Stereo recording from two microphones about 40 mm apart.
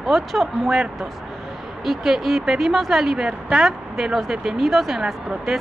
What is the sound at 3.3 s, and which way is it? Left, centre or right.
Speech, right.